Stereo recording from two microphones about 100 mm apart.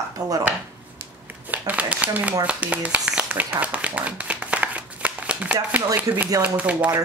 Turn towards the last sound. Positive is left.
turn(degrees=-15)  # may be behind; listen again after turning